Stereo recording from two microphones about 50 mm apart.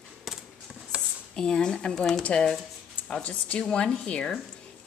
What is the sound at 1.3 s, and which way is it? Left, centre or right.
Speech, centre.